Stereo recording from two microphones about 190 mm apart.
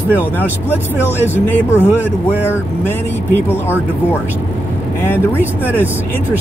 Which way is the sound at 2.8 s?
10° left (ahead or behind).